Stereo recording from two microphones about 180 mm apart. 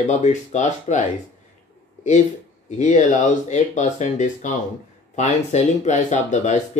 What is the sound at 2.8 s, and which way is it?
Speech, 40° left (ahead or behind).